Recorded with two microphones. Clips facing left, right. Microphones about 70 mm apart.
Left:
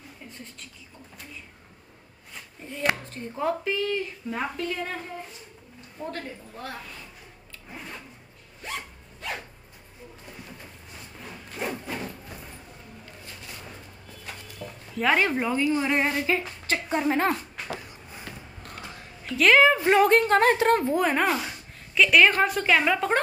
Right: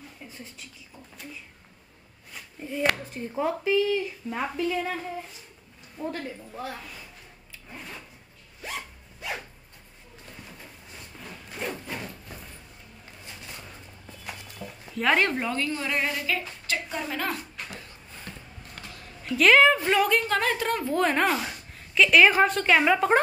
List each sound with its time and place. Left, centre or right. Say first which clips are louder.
3.1 s speech: even; centre
6.0 s speech: right 2 dB; centre
8.6 s zipper: left 1 dB; centre
11.5 s a sound: left 2 dB; centre
14.6 s dog: left 1 dB; centre
15.0 s a woman's voice: left 1 dB; centre; by 17.4 s left
17.7 s a sound: left 3 dB; centre
19.2 s speech: even; centre
19.9 s a woman's voice: left 4 dB; left
20.9 s a woman's voice: even; centre